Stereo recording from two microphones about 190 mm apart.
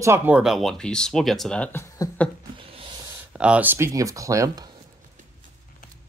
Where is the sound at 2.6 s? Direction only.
30° right (ahead or behind).